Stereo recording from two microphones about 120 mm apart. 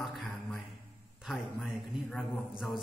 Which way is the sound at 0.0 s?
Centre (ahead or behind).